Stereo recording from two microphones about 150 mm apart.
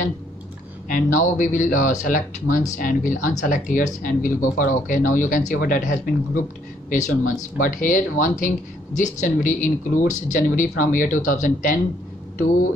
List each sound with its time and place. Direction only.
0.8 s speech: 65° left (ahead or behind)
7.5 s speech: 65° left (ahead or behind)